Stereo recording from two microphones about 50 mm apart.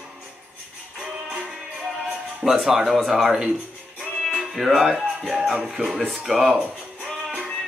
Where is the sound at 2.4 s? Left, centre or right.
Centre.